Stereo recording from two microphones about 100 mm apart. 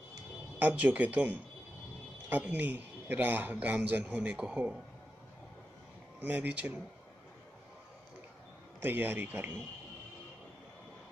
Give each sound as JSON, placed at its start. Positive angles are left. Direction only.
{"t": 0.6, "sound": "speech", "side_deg": -15}
{"t": 6.2, "sound": "speech", "side_deg": -15}
{"t": 8.8, "sound": "a man's voice", "side_deg": -20}